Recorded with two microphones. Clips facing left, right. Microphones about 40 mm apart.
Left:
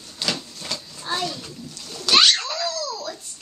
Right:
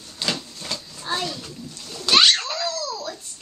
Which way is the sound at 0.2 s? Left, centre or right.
Centre.